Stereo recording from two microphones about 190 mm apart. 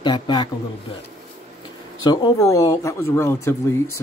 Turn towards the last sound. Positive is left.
turn(degrees=15)  # may be behind; listen again after turning